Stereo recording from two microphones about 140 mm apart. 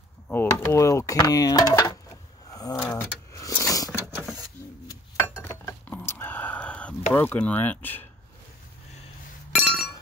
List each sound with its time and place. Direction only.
0.3 s speech: 15° left (ahead or behind)
2.5 s a sound: 25° left (ahead or behind)
5.4 s dishes: 15° left (ahead or behind)
7.2 s speech: 10° left (ahead or behind)
9.5 s chink: 5° right (ahead or behind)